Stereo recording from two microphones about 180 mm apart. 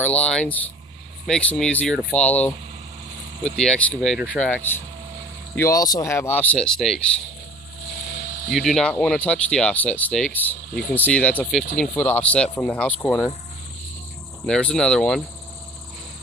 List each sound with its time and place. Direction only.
0.0 s speech: 5° left (ahead or behind)
8.1 s a sound: 70° left (ahead or behind)
8.5 s speech: centre (ahead or behind)
10.7 s speech: 60° left (ahead or behind)
11.0 s speech: 10° left (ahead or behind)
14.4 s speech: 5° left (ahead or behind)